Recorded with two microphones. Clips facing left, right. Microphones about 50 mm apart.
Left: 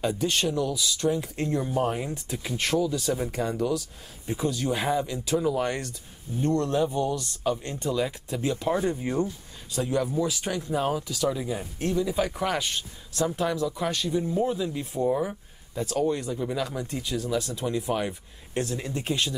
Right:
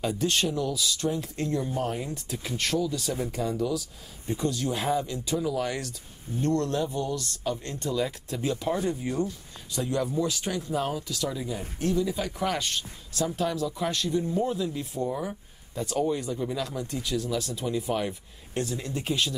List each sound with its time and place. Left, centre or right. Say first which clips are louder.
0.0 s speech: left 1 dB; centre
4.4 s speech: left 2 dB; centre
8.7 s speech: left 2 dB; centre
9.8 s speech: left 2 dB; centre
16.4 s speech: left 2 dB; centre